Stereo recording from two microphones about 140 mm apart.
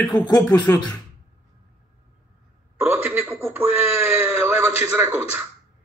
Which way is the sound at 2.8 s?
15° right (ahead or behind).